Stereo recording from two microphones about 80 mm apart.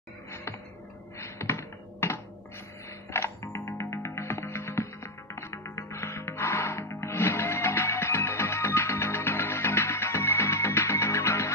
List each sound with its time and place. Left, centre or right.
1.2 s computer keyboard: left
3.1 s music: left